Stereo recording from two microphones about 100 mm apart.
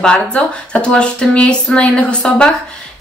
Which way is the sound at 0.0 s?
10° left (ahead or behind).